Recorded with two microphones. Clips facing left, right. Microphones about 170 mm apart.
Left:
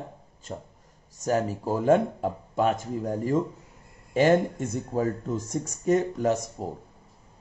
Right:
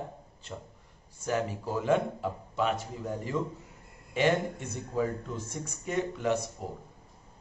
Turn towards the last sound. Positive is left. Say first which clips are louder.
# left 6 dB
turn(degrees=45)  # may be behind; listen again after turning